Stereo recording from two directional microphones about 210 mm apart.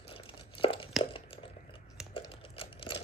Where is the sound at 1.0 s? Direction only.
25° left (ahead or behind).